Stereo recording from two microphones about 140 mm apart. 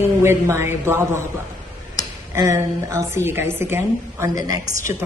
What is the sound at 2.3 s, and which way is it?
A woman's voice, 20° right (ahead or behind).